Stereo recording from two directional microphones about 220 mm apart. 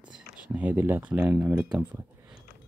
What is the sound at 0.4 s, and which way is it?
Speech, 5° right (ahead or behind).